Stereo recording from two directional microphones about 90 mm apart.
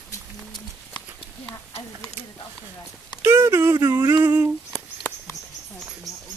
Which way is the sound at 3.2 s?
25° right (ahead or behind).